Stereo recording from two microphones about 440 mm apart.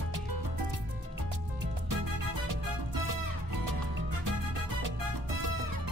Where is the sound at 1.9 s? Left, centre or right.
Right.